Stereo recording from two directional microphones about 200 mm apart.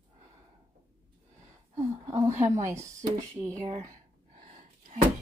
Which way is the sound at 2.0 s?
15° right (ahead or behind).